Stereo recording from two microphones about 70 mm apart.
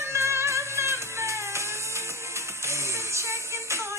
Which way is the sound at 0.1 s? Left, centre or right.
Right.